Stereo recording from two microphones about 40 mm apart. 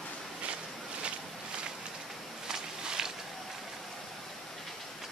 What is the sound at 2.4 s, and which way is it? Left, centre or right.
Walk, centre.